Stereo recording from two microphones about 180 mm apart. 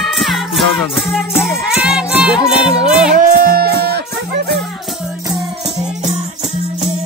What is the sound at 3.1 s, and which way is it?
Music, 50° right (ahead or behind).